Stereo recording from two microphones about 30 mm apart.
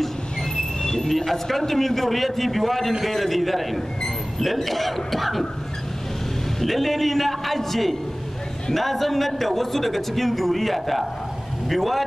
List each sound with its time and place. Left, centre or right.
0.8 s a sound: centre
1.1 s a man's voice: centre
6.6 s a man's voice: centre